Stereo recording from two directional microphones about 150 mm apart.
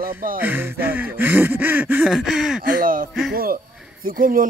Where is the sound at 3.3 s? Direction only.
80° right.